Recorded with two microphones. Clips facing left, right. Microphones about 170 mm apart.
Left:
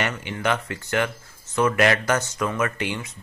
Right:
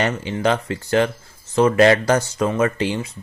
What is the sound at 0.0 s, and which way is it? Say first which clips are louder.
Speech: right 6 dB; 30° right (ahead or behind).